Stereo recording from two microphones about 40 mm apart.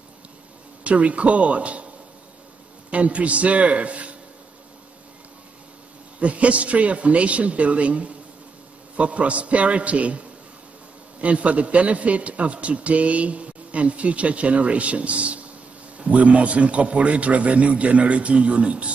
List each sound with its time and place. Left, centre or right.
0.8 s a man's voice: right
2.9 s a man's voice: right
6.1 s a man's voice: right